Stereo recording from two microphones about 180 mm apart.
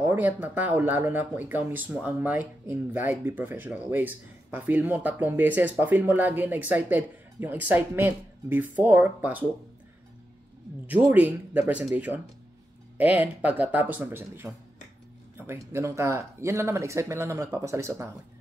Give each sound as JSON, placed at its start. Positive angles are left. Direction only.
{"t": 0.0, "sound": "speech", "side_deg": -10}
{"t": 10.9, "sound": "speech", "side_deg": -10}